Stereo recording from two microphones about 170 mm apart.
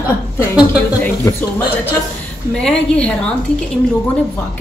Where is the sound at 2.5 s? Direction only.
5° left (ahead or behind).